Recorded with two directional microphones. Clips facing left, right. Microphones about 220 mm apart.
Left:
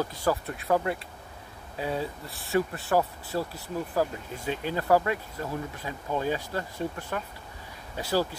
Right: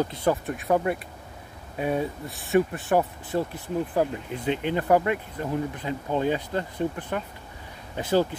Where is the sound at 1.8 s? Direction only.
20° right (ahead or behind).